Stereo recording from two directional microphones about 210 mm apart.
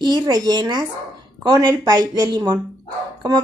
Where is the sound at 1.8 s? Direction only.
20° right (ahead or behind).